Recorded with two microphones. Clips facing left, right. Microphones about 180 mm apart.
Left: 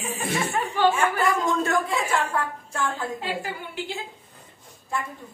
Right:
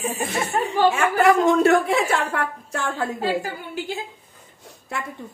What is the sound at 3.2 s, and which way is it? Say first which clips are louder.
Speech: right 6 dB; 40° right (ahead or behind).